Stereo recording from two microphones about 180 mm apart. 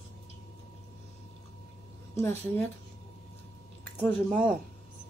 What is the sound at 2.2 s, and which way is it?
Speech, 15° left (ahead or behind).